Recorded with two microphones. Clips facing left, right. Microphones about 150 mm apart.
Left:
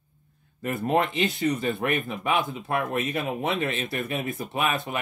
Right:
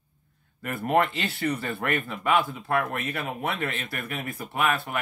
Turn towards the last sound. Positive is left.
turn(degrees=20)  # may be behind; listen again after turning